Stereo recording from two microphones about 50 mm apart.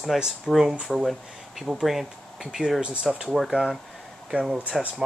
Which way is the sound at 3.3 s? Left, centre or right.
Centre.